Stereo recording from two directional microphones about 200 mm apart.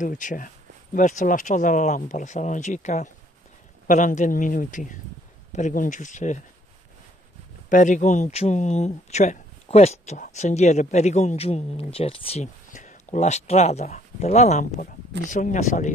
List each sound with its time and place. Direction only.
0.0 s speech: 40° left (ahead or behind)
7.7 s speech: 40° left (ahead or behind)